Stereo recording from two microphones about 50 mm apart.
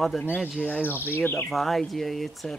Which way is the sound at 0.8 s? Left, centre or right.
Left.